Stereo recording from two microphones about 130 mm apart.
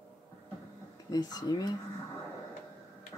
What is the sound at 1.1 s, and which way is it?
Speech, 30° left (ahead or behind).